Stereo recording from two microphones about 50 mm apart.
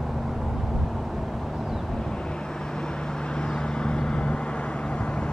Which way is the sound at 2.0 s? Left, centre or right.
Centre.